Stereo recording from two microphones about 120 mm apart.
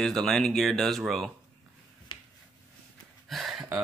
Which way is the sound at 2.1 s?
40° left (ahead or behind).